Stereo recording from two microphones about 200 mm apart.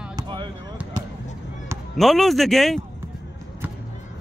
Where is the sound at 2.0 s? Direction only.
Centre (ahead or behind).